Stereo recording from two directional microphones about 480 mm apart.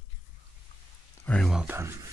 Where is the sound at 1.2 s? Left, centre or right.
Centre.